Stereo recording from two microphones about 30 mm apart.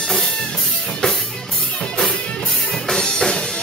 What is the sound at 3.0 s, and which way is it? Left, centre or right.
Music, left.